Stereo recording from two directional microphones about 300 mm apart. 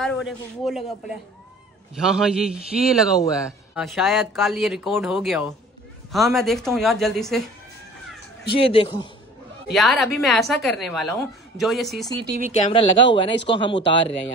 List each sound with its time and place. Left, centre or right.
0.0 s a woman's voice: centre
8.5 s speech: centre
9.8 s a woman's voice: centre
12.2 s speech: right
12.6 s speech: centre